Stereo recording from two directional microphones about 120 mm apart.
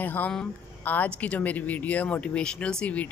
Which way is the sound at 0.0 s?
15° left (ahead or behind).